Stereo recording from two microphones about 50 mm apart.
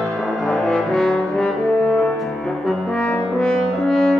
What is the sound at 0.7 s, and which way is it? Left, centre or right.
Brass instrument, centre.